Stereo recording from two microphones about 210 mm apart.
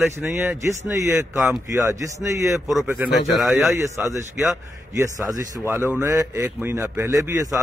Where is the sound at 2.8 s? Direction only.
5° right (ahead or behind).